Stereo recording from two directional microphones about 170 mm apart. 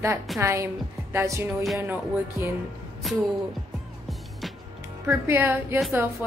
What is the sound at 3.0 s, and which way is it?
Music, centre (ahead or behind).